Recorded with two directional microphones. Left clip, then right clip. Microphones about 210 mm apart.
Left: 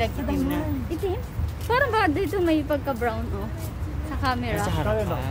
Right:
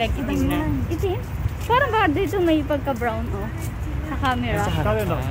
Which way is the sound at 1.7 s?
Centre (ahead or behind).